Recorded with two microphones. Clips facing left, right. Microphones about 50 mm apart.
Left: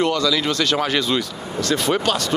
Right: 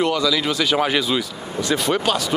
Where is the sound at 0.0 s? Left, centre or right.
Centre.